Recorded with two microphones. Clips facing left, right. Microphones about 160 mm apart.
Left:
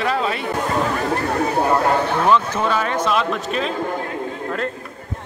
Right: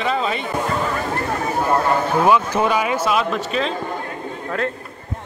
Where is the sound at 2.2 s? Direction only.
10° right (ahead or behind).